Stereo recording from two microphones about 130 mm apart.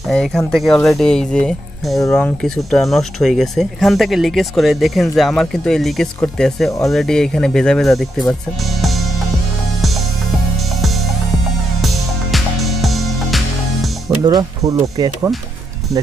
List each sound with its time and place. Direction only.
0.1 s speech: 5° left (ahead or behind)
11.8 s music: centre (ahead or behind)
14.0 s speech: 30° right (ahead or behind)